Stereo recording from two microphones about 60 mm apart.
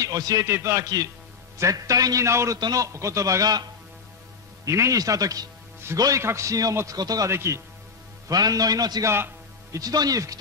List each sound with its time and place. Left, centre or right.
0.0 s speech: right
0.5 s a man's voice: right
0.8 s a man's voice: right
1.6 s a man's voice: right
2.2 s a man's voice: right
2.5 s a man's voice: right
4.6 s a man's voice: right
6.2 s a man's voice: right
6.9 s a man's voice: right
7.2 s a man's voice: right
8.3 s a man's voice: right
9.0 s a man's voice: right
9.7 s a man's voice: right